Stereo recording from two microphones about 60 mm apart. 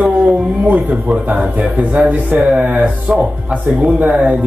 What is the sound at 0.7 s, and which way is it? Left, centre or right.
A man's voice, right.